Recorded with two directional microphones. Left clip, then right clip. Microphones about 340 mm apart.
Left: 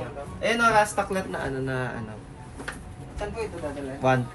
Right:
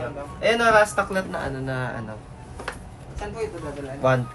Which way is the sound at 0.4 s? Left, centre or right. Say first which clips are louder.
Right 3 dB; centre.